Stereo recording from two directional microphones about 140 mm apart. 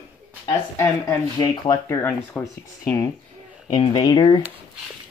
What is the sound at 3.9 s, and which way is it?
Speech, 30° left (ahead or behind).